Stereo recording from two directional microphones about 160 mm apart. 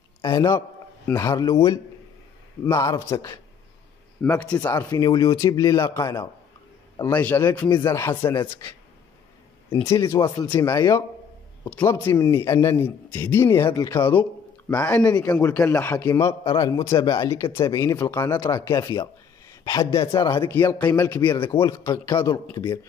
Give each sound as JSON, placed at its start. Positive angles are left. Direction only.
{"t": 0.2, "sound": "a man's voice", "side_deg": 25}
{"t": 4.2, "sound": "a man's voice", "side_deg": 5}
{"t": 4.6, "sound": "a man's voice", "side_deg": 20}
{"t": 9.8, "sound": "a man's voice", "side_deg": 20}
{"t": 14.7, "sound": "a man's voice", "side_deg": 10}
{"t": 20.3, "sound": "a man's voice", "side_deg": 15}
{"t": 21.2, "sound": "speech", "side_deg": 30}